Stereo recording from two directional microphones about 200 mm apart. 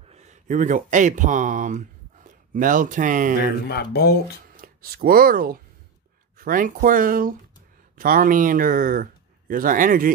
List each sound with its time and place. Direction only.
0.1 s speech: 35° right (ahead or behind)
3.6 s speech: 55° left (ahead or behind)
4.6 s speech: 50° right (ahead or behind)